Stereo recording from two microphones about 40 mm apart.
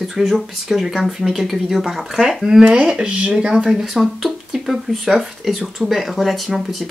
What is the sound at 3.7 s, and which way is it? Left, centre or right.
Speech, centre.